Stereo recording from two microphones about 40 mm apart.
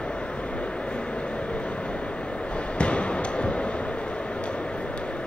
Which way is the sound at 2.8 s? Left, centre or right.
Left.